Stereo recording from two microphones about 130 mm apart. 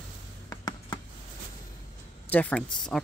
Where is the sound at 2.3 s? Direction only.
5° left (ahead or behind).